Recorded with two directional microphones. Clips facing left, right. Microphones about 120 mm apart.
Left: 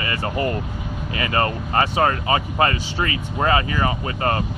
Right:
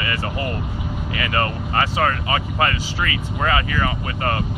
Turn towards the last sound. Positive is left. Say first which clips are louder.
# left 1 dB
turn(degrees=30)  # may be behind; listen again after turning